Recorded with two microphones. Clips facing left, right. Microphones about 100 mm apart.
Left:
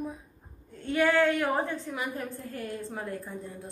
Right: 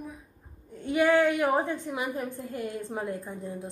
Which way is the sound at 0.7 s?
15° right (ahead or behind).